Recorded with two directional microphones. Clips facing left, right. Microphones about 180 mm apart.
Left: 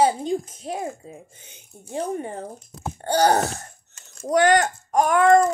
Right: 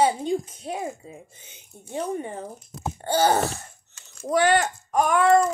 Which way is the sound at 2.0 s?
40° left (ahead or behind).